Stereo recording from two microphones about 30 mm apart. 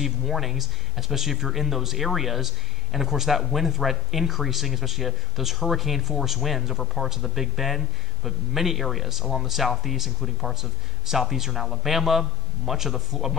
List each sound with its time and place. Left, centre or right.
0.0 s a man's voice: centre